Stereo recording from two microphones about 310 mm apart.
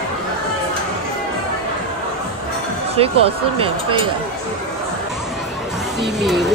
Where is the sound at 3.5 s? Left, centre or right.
Centre.